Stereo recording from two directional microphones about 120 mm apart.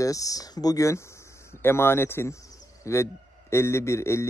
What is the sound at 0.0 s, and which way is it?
A man's voice, 30° left (ahead or behind).